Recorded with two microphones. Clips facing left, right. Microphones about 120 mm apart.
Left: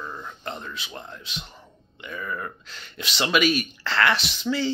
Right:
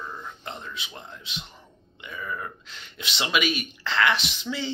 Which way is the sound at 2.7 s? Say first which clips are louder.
Left 2 dB; 20° right (ahead or behind).